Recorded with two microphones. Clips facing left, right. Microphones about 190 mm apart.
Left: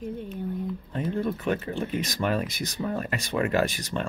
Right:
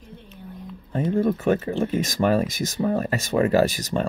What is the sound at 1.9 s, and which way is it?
Speech, 45° right (ahead or behind).